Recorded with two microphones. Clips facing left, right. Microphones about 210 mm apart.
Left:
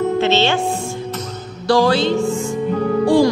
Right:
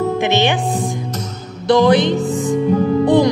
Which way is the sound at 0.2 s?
15° right (ahead or behind).